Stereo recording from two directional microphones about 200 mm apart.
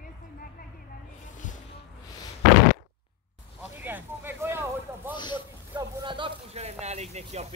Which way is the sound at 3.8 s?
10° right (ahead or behind).